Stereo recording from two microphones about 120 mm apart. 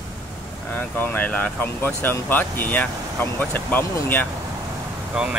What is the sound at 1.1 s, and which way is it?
Speech, 15° left (ahead or behind).